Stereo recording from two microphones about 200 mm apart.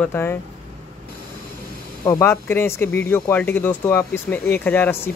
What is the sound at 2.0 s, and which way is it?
Speech, 15° left (ahead or behind).